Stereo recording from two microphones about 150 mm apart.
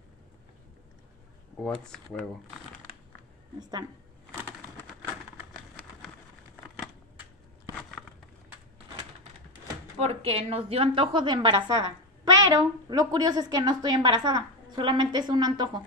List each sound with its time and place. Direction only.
1.6 s speech: 5° left (ahead or behind)
9.9 s a woman's voice: 45° right (ahead or behind); by 15.8 s 30° right (ahead or behind)